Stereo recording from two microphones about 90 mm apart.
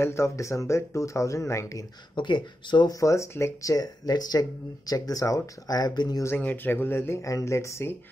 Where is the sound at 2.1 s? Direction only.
60° left (ahead or behind).